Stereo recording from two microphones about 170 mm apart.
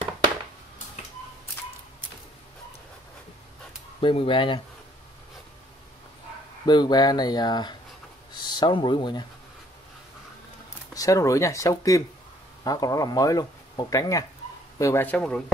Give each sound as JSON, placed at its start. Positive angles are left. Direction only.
{"t": 4.0, "sound": "speech", "side_deg": 30}
{"t": 6.6, "sound": "speech", "side_deg": 25}
{"t": 11.0, "sound": "speech", "side_deg": 20}